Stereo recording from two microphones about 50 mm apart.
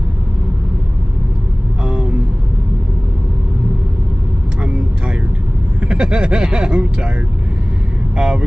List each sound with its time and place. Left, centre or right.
5.8 s speech: centre
8.2 s speech: right